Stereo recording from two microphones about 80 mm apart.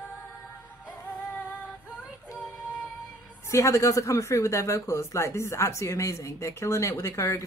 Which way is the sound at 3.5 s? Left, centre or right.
Left.